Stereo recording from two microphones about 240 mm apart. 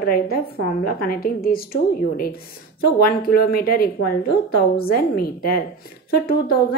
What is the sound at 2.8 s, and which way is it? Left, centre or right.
A woman's voice, left.